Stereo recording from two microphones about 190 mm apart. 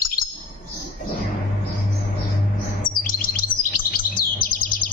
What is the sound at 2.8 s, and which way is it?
Chirp, 45° left (ahead or behind).